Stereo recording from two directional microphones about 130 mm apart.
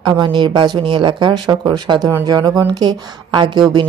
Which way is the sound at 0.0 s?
35° right (ahead or behind).